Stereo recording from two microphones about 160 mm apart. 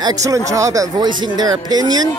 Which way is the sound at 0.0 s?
20° right (ahead or behind).